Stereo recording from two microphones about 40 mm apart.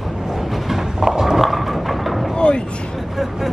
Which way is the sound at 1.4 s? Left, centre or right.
Centre.